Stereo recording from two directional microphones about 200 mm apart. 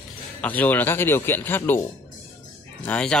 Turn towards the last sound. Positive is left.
turn(degrees=5)  # may be behind; listen again after turning